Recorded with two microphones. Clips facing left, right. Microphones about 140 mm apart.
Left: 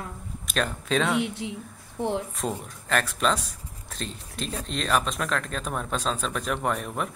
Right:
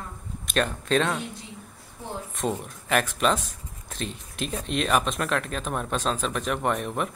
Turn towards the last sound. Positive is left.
turn(degrees=0)  # may be behind; listen again after turning